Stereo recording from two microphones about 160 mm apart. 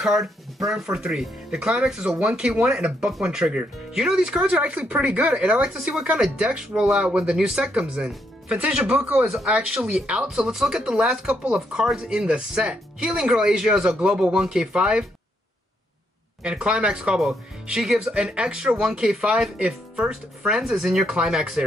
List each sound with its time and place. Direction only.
0.0 s speech: centre (ahead or behind)
16.4 s speech: 5° right (ahead or behind)